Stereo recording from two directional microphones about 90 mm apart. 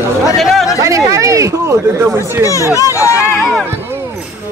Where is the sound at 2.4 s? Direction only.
35° left (ahead or behind).